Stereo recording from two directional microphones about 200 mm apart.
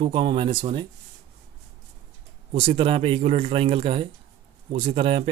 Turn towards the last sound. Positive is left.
turn(degrees=-30)  # may be behind; listen again after turning